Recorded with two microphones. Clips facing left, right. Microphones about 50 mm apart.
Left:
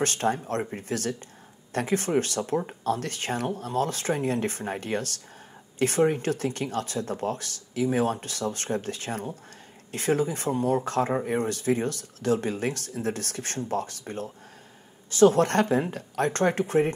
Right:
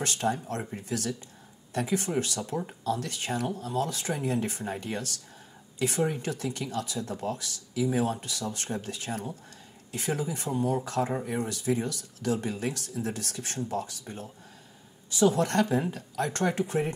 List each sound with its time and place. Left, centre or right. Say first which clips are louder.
0.0 s speech: left 3 dB; left